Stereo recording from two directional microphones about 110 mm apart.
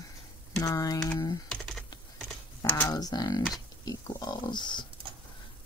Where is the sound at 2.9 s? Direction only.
35° left (ahead or behind).